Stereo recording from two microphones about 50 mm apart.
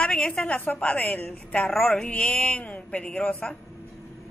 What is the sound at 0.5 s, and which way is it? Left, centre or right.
Mantra, left.